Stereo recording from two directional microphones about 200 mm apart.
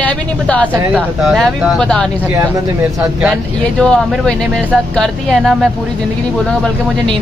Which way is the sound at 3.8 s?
5° left (ahead or behind).